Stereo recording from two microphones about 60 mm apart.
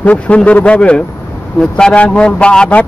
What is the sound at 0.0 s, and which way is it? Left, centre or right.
Speech, left.